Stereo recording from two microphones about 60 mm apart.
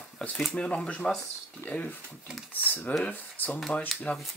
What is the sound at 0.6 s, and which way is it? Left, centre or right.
Speech, centre.